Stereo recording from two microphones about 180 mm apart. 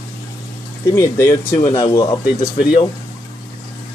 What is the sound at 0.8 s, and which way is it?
Speech, 15° left (ahead or behind).